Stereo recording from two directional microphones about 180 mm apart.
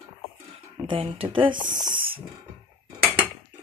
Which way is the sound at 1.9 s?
50° right (ahead or behind).